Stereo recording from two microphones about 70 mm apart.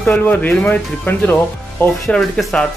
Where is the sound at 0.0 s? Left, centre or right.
Centre.